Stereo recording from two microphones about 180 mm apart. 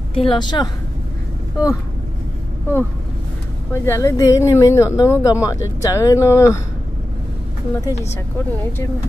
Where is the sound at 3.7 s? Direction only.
15° left (ahead or behind).